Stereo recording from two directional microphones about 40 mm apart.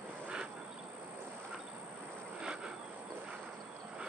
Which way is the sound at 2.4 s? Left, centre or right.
Right.